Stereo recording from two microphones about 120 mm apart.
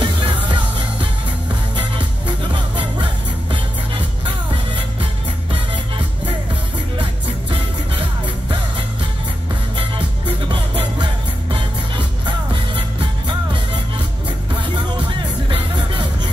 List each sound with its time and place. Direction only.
0.0 s music: 40° right (ahead or behind)
2.0 s music: 40° right (ahead or behind)
10.5 s music: 40° right (ahead or behind)
12.3 s music: 40° right (ahead or behind)